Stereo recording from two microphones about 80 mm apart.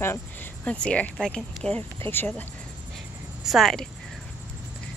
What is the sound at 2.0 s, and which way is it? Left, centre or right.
Speech, left.